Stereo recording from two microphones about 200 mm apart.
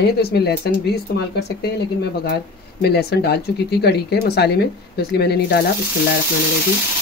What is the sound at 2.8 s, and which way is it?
Speech, 55° left (ahead or behind).